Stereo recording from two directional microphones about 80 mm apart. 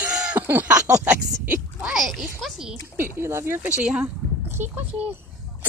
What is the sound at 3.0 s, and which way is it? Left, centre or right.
Speech, right.